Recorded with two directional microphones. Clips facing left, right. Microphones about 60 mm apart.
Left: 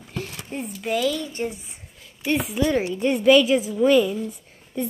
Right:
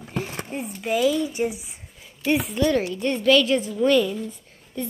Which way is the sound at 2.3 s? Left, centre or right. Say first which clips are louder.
Right 1 dB; centre.